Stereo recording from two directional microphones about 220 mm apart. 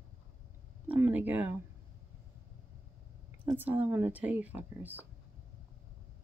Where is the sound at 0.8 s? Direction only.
10° right (ahead or behind).